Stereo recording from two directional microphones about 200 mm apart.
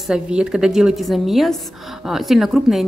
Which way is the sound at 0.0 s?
5° right (ahead or behind).